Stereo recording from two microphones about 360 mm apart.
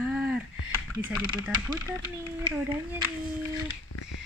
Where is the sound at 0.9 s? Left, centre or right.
Centre.